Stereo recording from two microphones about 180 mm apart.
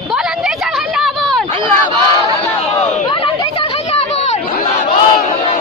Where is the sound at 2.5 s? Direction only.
30° left (ahead or behind).